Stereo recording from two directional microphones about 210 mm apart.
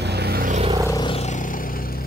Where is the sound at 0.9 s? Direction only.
25° left (ahead or behind); by 2.0 s 45° left (ahead or behind).